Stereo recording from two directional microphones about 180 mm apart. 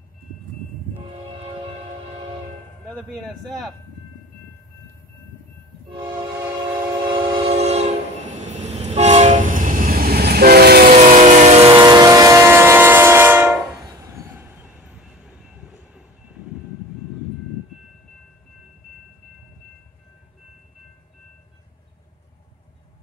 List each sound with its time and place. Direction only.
2.9 s speech: centre (ahead or behind)
7.1 s train: 30° right (ahead or behind); by 11.0 s 60° right (ahead or behind)
11.0 s vehicle: 40° right (ahead or behind)
12.0 s train: 20° right (ahead or behind)
14.6 s train: 5° right (ahead or behind)